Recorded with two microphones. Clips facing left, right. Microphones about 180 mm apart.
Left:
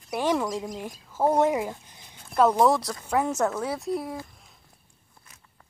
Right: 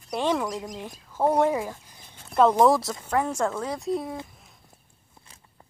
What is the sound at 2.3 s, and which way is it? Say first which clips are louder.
Speech: right 2 dB; 5° left (ahead or behind).